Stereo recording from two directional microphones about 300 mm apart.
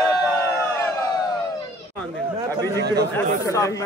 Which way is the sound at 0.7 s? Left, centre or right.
Centre.